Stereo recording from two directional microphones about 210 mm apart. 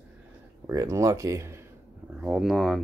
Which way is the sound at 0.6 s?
15° right (ahead or behind).